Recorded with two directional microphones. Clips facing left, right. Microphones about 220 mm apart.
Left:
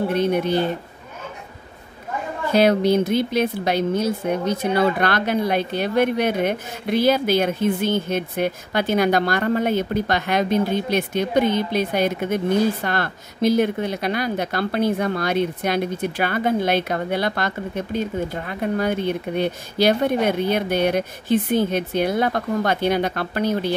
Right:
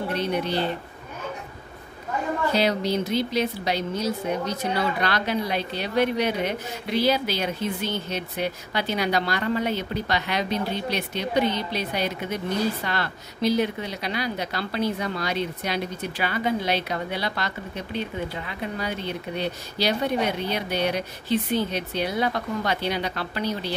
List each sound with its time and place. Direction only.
0.1 s speech: 50° left (ahead or behind)
2.5 s speech: 55° left (ahead or behind)